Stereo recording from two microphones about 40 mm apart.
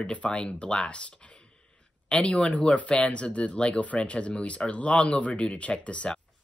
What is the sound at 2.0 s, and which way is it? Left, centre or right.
Speech, left.